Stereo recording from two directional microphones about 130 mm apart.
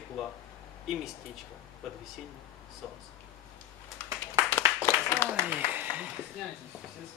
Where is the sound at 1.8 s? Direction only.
Centre (ahead or behind).